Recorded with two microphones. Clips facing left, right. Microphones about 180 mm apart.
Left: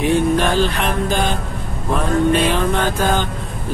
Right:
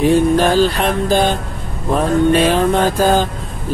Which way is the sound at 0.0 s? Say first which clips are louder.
Right 4 dB; 35° right (ahead or behind).